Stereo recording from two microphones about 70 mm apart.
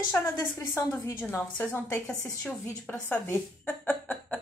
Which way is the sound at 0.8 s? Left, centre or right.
Left.